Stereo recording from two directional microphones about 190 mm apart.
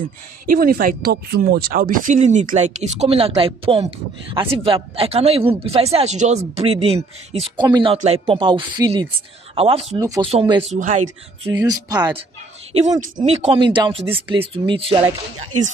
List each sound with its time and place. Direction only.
0.5 s speech: 50° right (ahead or behind); by 9.8 s 30° right (ahead or behind)
9.9 s speech: 15° right (ahead or behind)
10.7 s speech: 40° right (ahead or behind)
11.5 s speech: 20° right (ahead or behind)
13.2 s speech: 35° right (ahead or behind)